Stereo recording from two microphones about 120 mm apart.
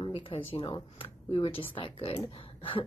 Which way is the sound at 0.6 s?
45° left (ahead or behind).